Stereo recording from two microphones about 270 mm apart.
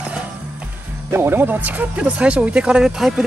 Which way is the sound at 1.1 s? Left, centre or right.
Centre.